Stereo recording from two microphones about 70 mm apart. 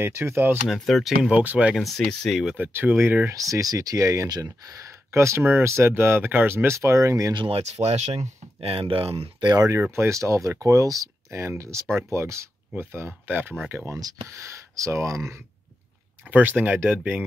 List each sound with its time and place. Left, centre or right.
0.0 s speech: right
0.7 s speech: centre
1.3 s speech: centre
1.8 s speech: centre
2.5 s speech: right
3.3 s speech: right
7.8 s speech: right
9.4 s speech: right
9.7 s speech: right
11.2 s speech: right
12.7 s speech: right
13.9 s speech: right
14.3 s speech: right
16.3 s speech: right